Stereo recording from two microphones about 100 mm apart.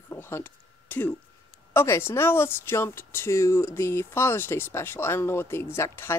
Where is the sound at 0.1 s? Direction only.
20° left (ahead or behind).